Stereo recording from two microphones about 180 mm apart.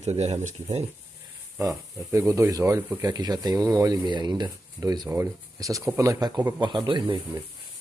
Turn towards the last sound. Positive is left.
turn(degrees=-25)  # may be behind; listen again after turning